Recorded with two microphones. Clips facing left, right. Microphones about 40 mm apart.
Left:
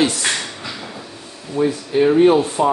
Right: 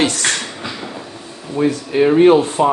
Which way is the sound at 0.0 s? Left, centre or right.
Right.